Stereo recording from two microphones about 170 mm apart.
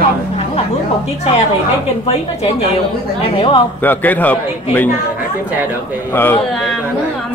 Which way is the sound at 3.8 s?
10° left (ahead or behind).